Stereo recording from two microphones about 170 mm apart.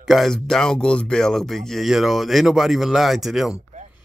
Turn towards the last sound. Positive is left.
turn(degrees=0)  # may be behind; listen again after turning